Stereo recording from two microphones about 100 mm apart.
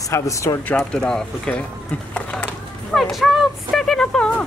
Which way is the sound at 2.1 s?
10° left (ahead or behind).